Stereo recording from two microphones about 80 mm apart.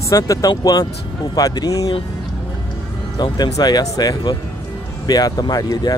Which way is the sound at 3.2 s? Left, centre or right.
Left.